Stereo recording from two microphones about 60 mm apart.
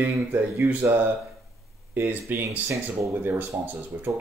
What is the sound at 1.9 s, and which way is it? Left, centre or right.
Speech, right.